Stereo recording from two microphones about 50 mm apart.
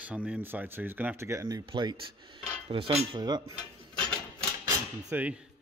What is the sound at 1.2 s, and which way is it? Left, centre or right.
Speech, right.